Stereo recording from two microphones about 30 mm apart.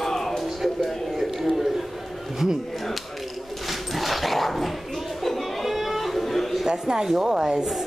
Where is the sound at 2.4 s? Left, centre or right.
Centre.